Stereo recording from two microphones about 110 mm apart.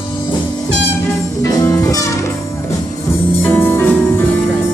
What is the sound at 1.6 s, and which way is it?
Music, 30° left (ahead or behind).